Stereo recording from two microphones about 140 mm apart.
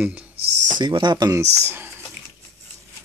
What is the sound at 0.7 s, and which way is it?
Speech, 35° right (ahead or behind).